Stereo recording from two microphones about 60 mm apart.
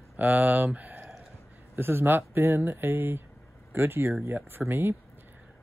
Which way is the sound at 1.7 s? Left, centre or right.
Right.